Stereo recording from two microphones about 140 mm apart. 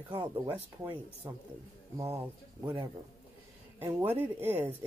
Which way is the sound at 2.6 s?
30° right (ahead or behind).